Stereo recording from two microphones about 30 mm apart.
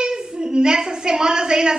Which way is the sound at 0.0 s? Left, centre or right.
Right.